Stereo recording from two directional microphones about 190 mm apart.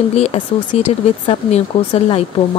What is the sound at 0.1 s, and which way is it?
Speech, 35° left (ahead or behind).